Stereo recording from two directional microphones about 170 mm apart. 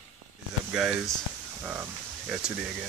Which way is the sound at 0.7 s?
5° right (ahead or behind).